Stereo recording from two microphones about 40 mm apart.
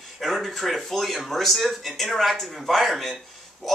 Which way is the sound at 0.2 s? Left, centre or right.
Centre.